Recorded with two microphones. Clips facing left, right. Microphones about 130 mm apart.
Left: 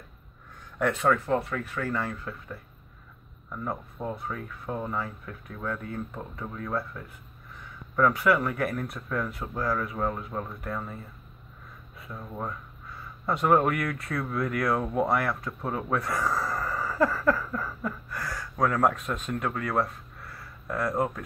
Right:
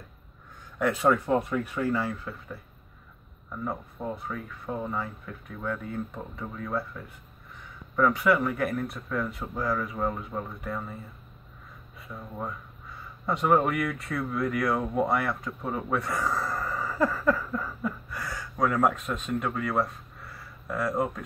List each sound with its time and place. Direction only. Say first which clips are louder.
0.7 s speech: even; 5° right (ahead or behind)
1.0 s speech: right 2 dB; 15° right (ahead or behind)
2.0 s speech: right 1 dB; centre (ahead or behind)
12.1 s speech: left 1 dB; centre (ahead or behind)